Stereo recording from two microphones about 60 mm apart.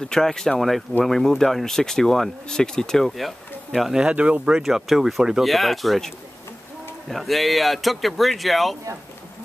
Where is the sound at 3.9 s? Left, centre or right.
Centre.